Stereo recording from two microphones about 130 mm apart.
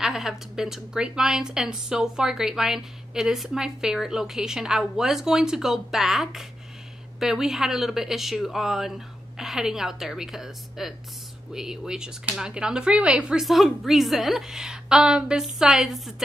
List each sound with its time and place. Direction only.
0.0 s a woman's voice: centre (ahead or behind)